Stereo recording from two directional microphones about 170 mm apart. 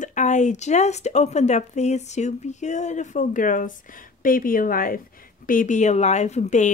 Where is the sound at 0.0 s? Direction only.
45° left (ahead or behind).